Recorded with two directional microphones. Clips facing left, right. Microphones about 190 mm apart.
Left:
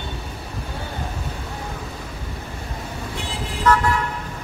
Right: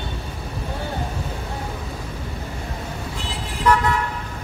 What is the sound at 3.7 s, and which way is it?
Toot, 10° right (ahead or behind).